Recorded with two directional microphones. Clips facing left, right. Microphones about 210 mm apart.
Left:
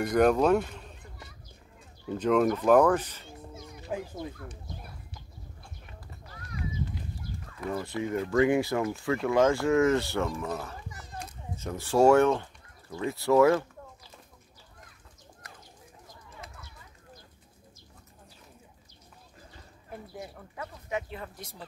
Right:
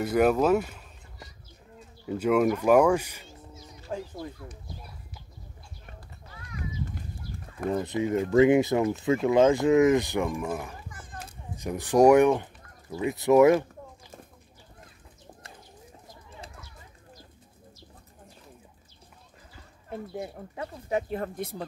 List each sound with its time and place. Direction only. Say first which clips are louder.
0.0 s speech: even; 5° right (ahead or behind)
2.0 s speech: right 1 dB; 10° right (ahead or behind)
3.3 s a sound: left 3 dB; 55° left (ahead or behind)
7.7 s speech: right 4 dB; 20° right (ahead or behind)
10.9 s children playing: even; 50° right (ahead or behind)
11.5 s speech: right 3 dB; 15° right (ahead or behind)
19.9 s speech: right 6 dB; 30° right (ahead or behind); by 21.6 s 55° right (ahead or behind)